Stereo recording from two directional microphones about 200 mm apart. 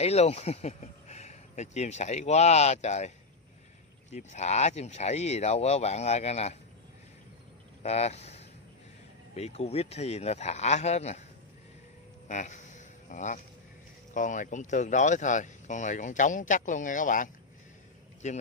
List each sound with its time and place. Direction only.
0.0 s speech: 30° left (ahead or behind)
4.1 s speech: 35° left (ahead or behind)
7.8 s speech: 30° left (ahead or behind)
12.3 s a sound: 40° left (ahead or behind)
14.1 s speech: 40° left (ahead or behind)